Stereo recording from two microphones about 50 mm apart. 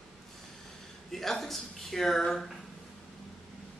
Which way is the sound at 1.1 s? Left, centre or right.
Centre.